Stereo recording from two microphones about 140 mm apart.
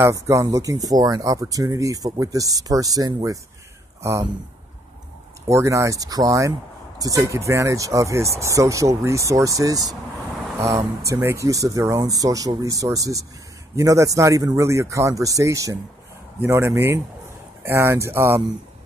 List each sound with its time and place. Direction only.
0.0 s speech: 20° right (ahead or behind)
5.5 s speech: 20° right (ahead or behind)
11.0 s speech: 20° right (ahead or behind)